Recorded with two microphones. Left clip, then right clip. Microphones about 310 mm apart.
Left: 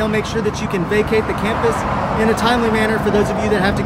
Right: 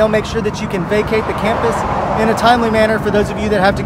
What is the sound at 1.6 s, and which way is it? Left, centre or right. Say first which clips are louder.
Speech: right 2 dB; right.